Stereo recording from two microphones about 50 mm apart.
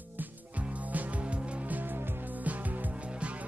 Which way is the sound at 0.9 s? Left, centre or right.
Right.